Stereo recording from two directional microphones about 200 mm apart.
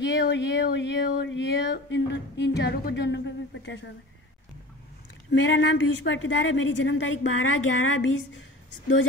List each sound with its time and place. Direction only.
0.0 s speech: 60° left (ahead or behind)
5.3 s a woman's voice: 70° left (ahead or behind)